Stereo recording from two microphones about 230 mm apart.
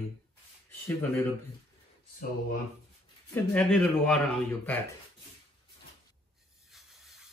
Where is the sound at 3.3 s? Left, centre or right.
Centre.